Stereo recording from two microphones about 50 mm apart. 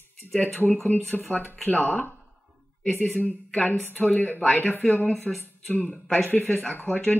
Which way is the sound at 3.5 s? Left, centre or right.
Left.